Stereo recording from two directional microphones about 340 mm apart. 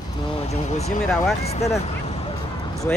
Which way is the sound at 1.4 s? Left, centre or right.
Centre.